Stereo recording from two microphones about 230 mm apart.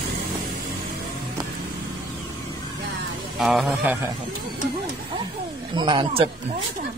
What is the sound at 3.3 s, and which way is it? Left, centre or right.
Speech, centre.